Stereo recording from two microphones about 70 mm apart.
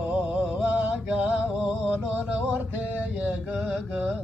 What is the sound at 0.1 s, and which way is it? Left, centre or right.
Music, centre.